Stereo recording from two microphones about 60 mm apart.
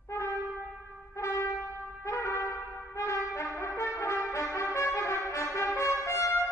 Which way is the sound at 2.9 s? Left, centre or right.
Left.